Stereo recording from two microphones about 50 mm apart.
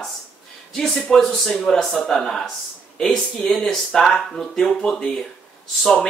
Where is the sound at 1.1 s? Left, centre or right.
Centre.